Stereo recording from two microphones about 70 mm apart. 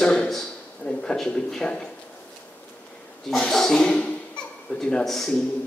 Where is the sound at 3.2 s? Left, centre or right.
Centre.